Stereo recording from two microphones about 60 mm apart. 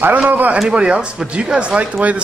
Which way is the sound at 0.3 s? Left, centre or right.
Right.